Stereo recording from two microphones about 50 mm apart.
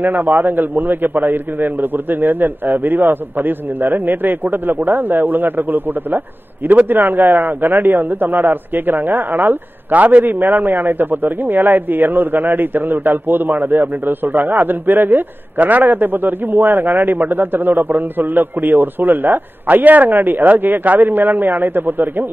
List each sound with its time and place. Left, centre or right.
0.0 s speech: right